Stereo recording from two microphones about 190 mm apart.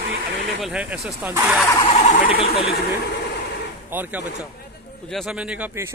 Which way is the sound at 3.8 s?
10° right (ahead or behind).